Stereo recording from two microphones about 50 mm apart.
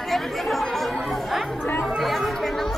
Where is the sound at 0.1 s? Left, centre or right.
Centre.